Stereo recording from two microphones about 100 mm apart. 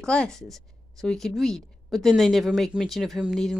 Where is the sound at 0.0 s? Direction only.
10° left (ahead or behind).